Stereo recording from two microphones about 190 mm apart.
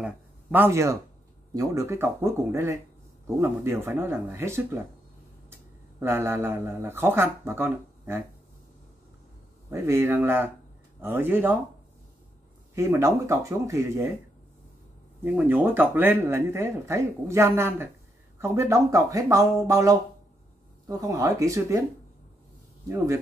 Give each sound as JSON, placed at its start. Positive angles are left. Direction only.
{"t": 0.0, "sound": "a sound", "side_deg": -10}
{"t": 1.5, "sound": "speech", "side_deg": -15}
{"t": 5.9, "sound": "speech", "side_deg": -15}
{"t": 9.7, "sound": "speech", "side_deg": -15}
{"t": 12.7, "sound": "speech", "side_deg": -15}
{"t": 15.2, "sound": "speech", "side_deg": -10}
{"t": 22.8, "sound": "speech", "side_deg": -15}